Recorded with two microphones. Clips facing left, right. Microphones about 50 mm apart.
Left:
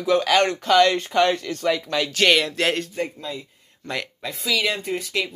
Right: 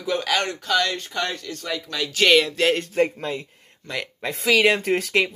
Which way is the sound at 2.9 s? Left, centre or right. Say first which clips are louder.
Right 6 dB; right.